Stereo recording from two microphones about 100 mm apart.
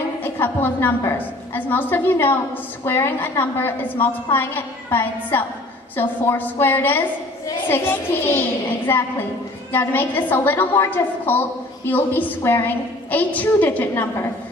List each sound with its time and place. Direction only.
0.2 s a woman's voice: 20° left (ahead or behind)